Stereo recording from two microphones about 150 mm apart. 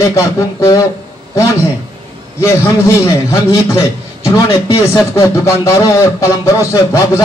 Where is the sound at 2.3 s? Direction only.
20° left (ahead or behind).